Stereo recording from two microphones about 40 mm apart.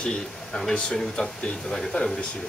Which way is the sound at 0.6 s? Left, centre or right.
Centre.